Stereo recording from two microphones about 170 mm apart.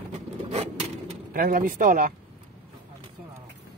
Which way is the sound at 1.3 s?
55° right (ahead or behind).